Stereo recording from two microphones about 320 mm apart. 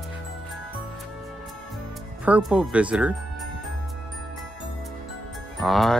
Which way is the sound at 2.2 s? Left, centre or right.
Centre.